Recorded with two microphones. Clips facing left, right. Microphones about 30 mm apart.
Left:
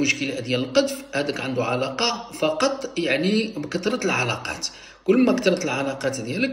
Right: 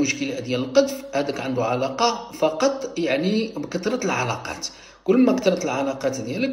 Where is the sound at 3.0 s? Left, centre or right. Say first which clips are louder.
Even; left.